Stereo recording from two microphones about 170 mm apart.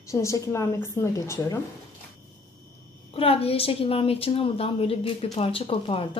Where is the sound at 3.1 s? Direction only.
35° left (ahead or behind).